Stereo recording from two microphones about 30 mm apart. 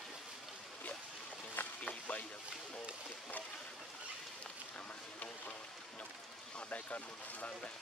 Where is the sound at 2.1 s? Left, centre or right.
Left.